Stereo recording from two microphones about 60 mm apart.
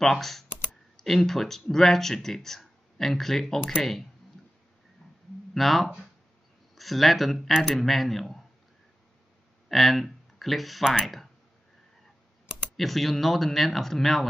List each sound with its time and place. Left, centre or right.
0.0 s speech: centre
5.5 s speech: centre
9.7 s speech: centre
12.7 s speech: centre